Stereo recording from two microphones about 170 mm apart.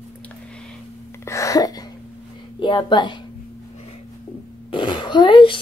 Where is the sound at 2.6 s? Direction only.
30° left (ahead or behind).